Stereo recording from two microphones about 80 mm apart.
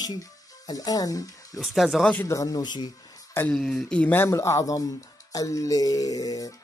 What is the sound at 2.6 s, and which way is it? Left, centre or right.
Speech, left.